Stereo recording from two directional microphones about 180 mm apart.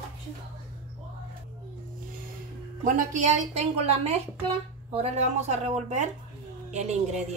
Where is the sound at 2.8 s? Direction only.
45° right (ahead or behind).